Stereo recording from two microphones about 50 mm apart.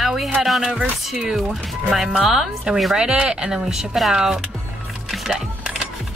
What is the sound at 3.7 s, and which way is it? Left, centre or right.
Speech, centre.